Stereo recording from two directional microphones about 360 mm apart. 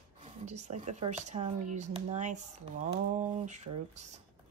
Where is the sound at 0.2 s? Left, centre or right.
Centre.